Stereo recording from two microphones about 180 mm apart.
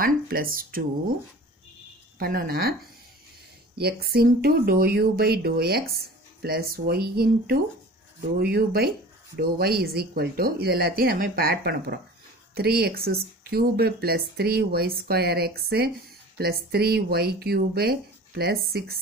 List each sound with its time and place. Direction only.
0.0 s speech: 55° right (ahead or behind)
2.1 s speech: 55° right (ahead or behind)
3.7 s speech: 60° right (ahead or behind)